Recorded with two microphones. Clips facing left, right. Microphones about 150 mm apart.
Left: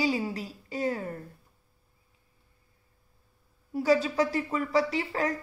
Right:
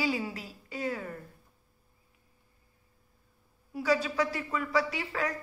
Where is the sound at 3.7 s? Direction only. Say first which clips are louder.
Left 4 dB; 40° left (ahead or behind).